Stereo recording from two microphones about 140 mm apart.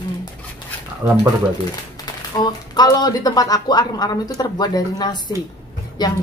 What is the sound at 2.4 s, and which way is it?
Speech, 30° left (ahead or behind).